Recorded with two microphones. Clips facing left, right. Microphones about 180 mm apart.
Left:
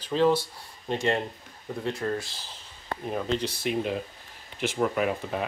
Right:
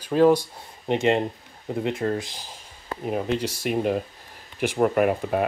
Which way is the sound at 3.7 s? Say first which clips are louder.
Right 7 dB; 50° right (ahead or behind).